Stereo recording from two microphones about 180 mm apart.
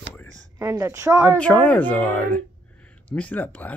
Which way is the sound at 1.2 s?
10° left (ahead or behind).